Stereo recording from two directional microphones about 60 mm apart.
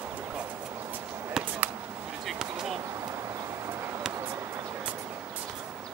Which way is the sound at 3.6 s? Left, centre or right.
Right.